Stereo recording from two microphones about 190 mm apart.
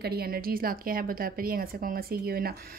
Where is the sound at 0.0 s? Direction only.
55° right (ahead or behind).